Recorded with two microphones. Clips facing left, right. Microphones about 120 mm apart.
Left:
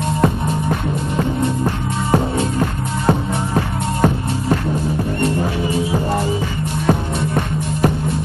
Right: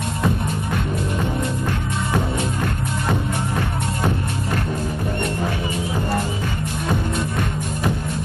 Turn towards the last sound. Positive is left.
turn(degrees=50)  # may be behind; listen again after turning